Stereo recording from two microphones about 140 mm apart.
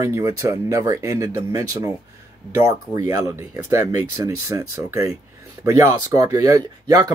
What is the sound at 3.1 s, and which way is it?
Speech, 25° right (ahead or behind).